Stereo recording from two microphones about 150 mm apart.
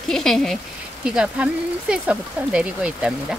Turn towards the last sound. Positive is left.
turn(degrees=-5)  # may be behind; listen again after turning